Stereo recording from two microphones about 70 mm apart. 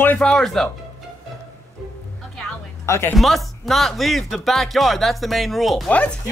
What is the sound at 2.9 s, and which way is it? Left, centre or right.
Speech, left.